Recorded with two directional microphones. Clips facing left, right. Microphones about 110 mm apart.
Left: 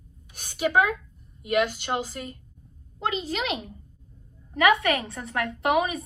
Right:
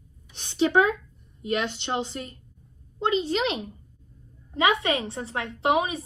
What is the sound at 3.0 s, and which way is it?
A woman's voice, 30° right (ahead or behind).